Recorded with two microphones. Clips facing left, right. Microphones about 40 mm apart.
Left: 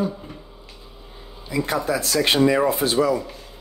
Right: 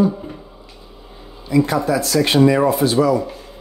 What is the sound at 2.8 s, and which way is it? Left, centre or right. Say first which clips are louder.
Speech: right 4 dB; left.